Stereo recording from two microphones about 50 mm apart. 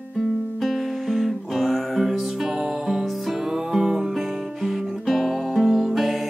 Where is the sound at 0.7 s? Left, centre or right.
Centre.